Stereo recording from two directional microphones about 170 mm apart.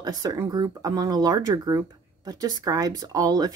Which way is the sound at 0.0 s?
20° right (ahead or behind).